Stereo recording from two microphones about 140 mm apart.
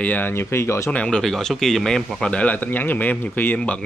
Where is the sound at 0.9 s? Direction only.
5° left (ahead or behind).